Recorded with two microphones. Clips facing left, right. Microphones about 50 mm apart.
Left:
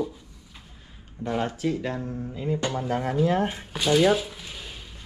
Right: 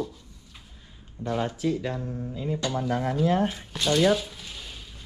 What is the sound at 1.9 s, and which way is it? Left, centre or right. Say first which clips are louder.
Speech: left 1 dB; left.